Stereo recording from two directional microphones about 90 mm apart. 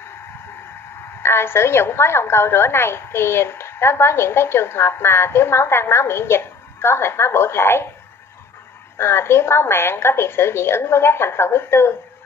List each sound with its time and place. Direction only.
1.2 s a woman's voice: 25° left (ahead or behind)
8.9 s a woman's voice: 25° left (ahead or behind)